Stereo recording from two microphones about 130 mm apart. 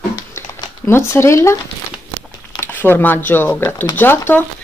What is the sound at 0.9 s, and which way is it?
Speech, 20° left (ahead or behind).